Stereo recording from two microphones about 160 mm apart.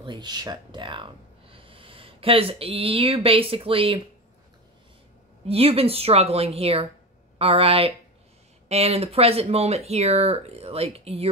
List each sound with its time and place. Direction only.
0.0 s speech: 30° right (ahead or behind)
5.5 s speech: 35° right (ahead or behind)